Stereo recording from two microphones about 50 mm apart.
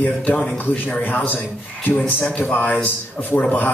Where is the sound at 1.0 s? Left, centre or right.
Left.